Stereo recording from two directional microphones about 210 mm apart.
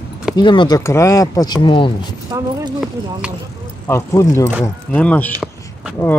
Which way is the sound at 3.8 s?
10° left (ahead or behind).